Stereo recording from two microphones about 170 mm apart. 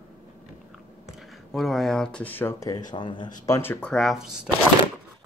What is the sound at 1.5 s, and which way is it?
Speech, centre (ahead or behind).